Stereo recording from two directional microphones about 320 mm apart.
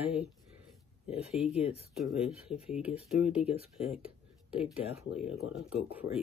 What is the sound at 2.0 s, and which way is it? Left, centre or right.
Speech, centre.